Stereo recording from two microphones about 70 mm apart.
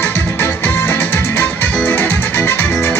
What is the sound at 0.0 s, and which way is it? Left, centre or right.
Music, left.